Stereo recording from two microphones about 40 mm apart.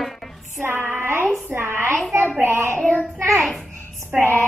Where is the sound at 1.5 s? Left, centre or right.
Right.